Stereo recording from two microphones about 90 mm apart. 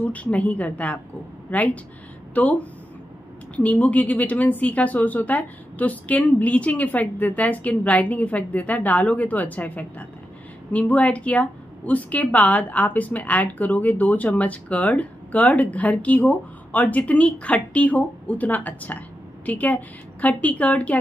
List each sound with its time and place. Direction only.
0.0 s a woman's voice: 15° left (ahead or behind)